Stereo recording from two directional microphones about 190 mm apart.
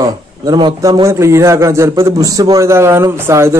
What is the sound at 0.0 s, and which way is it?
A man's voice, 20° right (ahead or behind).